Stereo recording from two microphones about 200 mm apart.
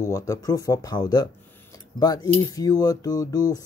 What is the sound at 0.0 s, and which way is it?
Speech, 15° left (ahead or behind).